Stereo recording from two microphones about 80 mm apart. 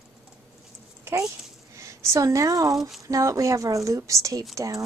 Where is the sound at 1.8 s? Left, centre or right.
Right.